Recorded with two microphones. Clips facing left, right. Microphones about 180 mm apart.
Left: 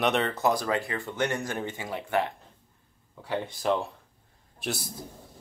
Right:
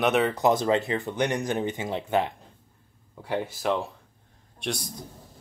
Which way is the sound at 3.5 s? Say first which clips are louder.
Even; centre (ahead or behind).